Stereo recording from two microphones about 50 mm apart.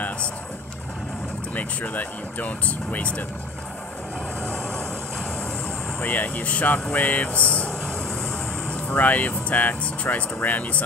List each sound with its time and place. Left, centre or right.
1.5 s speech: left
5.9 s speech: left
8.8 s speech: left